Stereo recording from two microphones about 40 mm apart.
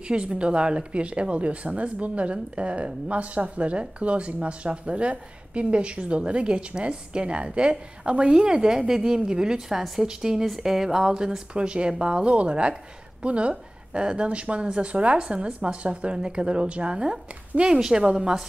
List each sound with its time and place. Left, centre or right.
0.1 s a woman's voice: right